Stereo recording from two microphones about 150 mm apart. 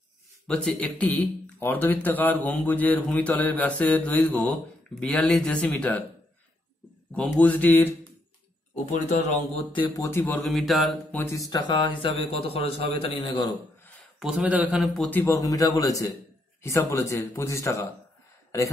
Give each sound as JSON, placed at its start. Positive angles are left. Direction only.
{"t": 0.5, "sound": "speech", "side_deg": 10}
{"t": 7.2, "sound": "speech", "side_deg": 10}
{"t": 8.9, "sound": "speech", "side_deg": 55}
{"t": 9.8, "sound": "a man's voice", "side_deg": 30}
{"t": 10.0, "sound": "speech", "side_deg": 15}
{"t": 10.5, "sound": "mantra", "side_deg": 0}
{"t": 11.1, "sound": "a man's voice", "side_deg": 20}
{"t": 14.2, "sound": "a man's voice", "side_deg": -5}
{"t": 15.0, "sound": "speech", "side_deg": 15}